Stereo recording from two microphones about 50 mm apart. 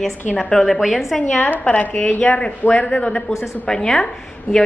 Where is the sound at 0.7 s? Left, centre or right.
Centre.